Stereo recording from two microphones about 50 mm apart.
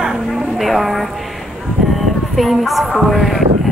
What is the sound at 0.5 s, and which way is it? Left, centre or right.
Speech, centre.